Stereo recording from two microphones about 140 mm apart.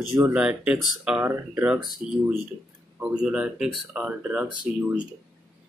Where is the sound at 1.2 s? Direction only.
15° right (ahead or behind).